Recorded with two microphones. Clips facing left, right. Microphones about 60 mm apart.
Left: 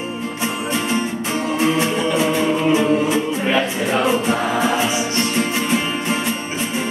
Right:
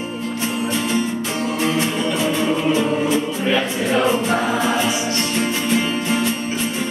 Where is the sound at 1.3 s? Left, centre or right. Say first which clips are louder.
Left 4 dB; centre.